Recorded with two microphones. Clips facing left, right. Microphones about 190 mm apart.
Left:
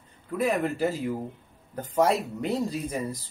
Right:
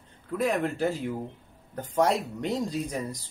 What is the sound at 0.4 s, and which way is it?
Speech, 5° left (ahead or behind).